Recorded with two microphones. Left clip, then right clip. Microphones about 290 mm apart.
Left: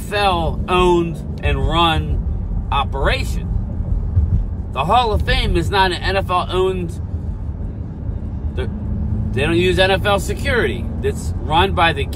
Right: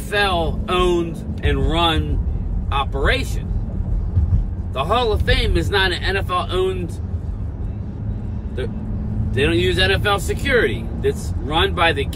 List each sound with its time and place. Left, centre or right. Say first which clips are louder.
0.1 s speech: left 2 dB; centre
4.7 s speech: left 3 dB; centre
9.4 s speech: left 2 dB; centre